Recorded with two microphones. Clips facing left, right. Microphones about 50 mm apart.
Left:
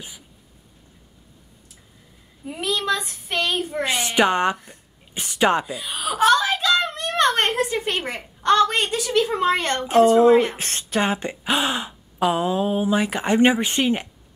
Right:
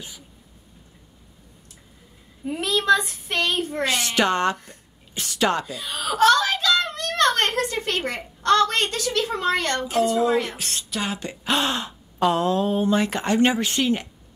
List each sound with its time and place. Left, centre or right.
2.4 s speech: centre
3.8 s a woman's voice: centre
11.4 s speech: centre